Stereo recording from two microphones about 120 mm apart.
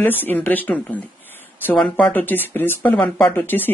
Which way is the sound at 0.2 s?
15° left (ahead or behind).